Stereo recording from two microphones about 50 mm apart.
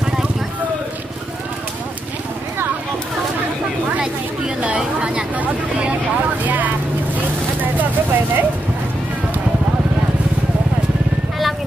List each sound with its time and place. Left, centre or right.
4.7 s a sound: centre
6.4 s vehicle: right
7.7 s vehicle: right